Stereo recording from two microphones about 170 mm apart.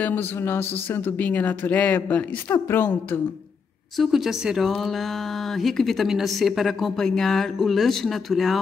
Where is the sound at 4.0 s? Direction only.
Centre (ahead or behind).